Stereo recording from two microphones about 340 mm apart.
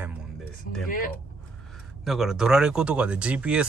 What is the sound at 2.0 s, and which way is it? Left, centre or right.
Speech, centre.